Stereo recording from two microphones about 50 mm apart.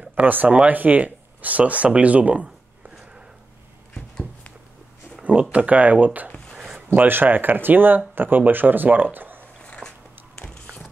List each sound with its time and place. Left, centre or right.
0.1 s speech: right
0.5 s speech: right
5.2 s speech: right
9.6 s biting: centre